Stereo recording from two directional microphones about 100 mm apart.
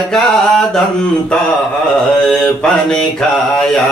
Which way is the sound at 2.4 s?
10° left (ahead or behind).